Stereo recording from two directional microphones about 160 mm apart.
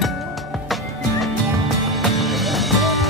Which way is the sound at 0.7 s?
Centre (ahead or behind).